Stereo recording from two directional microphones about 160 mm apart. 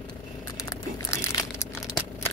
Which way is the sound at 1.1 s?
15° left (ahead or behind).